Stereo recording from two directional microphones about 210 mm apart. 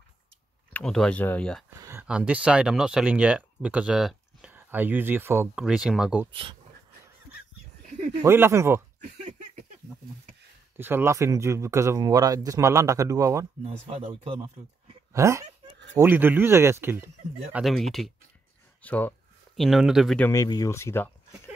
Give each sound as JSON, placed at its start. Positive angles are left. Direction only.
{"t": 0.7, "sound": "speech", "side_deg": 5}
{"t": 1.8, "sound": "speech", "side_deg": -10}
{"t": 8.2, "sound": "speech", "side_deg": -10}
{"t": 9.2, "sound": "a sound", "side_deg": -35}
{"t": 10.8, "sound": "speech", "side_deg": -10}
{"t": 13.7, "sound": "speech", "side_deg": -30}
{"t": 15.1, "sound": "speech", "side_deg": -15}
{"t": 20.2, "sound": "speech", "side_deg": 15}